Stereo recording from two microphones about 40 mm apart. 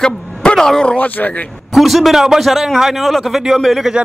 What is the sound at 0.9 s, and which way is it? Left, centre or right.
Speech, left.